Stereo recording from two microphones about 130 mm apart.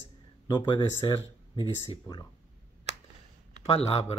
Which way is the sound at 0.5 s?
35° left (ahead or behind).